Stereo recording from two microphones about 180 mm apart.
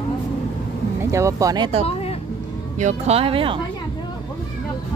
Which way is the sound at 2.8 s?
40° right (ahead or behind).